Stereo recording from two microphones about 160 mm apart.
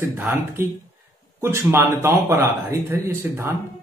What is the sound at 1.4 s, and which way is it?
A man's voice, 15° right (ahead or behind).